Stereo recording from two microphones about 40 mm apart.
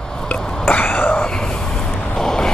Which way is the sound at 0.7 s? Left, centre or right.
Left.